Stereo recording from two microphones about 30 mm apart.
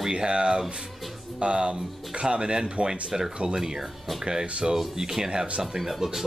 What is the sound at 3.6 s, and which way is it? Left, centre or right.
Speech, centre.